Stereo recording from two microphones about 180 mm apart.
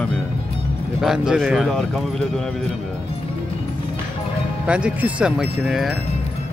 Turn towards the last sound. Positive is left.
turn(degrees=0)  # may be behind; listen again after turning